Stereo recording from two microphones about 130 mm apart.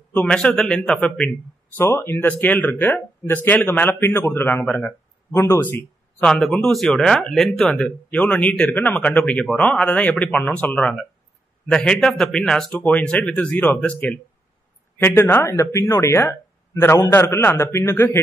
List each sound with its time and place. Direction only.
0.1 s speech: 10° left (ahead or behind)
1.8 s speech: 20° left (ahead or behind)
5.3 s speech: 20° left (ahead or behind)